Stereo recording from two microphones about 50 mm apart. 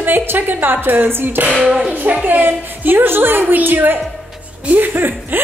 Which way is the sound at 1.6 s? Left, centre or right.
Centre.